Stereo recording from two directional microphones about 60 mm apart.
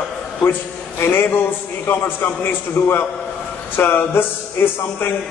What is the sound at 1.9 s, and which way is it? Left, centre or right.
A man's voice, left.